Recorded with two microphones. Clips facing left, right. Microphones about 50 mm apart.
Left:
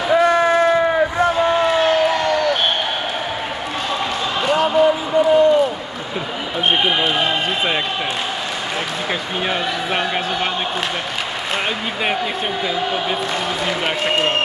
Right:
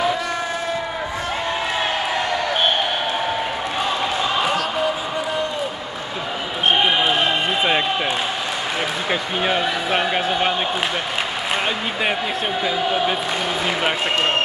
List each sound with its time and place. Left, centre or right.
0.1 s a sound: left
6.8 s basketball bounce: centre
9.4 s a man's voice: centre